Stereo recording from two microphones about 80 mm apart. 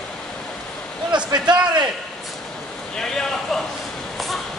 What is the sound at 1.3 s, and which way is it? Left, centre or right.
Speech, right.